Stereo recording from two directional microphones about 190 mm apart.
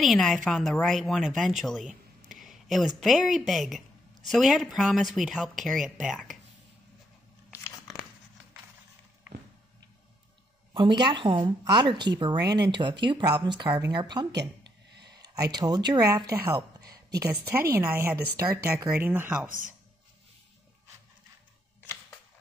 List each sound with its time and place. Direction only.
0.0 s speech: centre (ahead or behind)
10.7 s speech: 25° right (ahead or behind)
15.2 s speech: 20° right (ahead or behind)
16.9 s a sound: 20° right (ahead or behind)
17.5 s speech: 10° right (ahead or behind)
19.4 s speech: 45° right (ahead or behind)